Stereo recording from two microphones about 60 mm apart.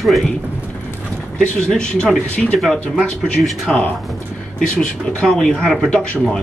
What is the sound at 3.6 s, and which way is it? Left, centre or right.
Speech, left.